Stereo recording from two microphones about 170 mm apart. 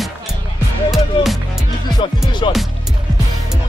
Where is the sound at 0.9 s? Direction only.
Centre (ahead or behind).